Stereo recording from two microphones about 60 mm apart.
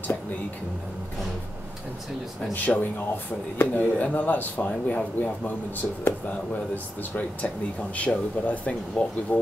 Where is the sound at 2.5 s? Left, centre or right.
Left.